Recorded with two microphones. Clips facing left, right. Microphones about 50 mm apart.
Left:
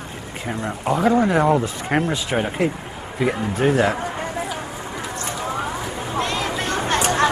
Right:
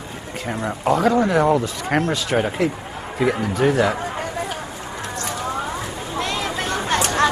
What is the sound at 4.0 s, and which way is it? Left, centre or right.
Chatter, centre.